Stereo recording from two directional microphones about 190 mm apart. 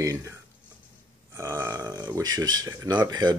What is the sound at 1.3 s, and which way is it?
Speech, 15° right (ahead or behind).